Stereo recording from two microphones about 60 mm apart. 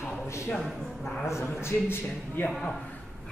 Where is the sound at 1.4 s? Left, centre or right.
Left.